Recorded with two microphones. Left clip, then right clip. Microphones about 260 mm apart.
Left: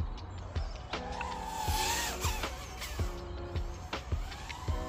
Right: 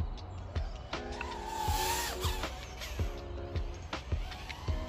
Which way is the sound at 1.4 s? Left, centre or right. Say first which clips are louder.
Right 2 dB; right.